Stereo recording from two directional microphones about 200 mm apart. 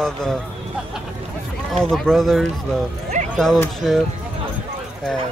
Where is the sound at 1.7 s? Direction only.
Centre (ahead or behind).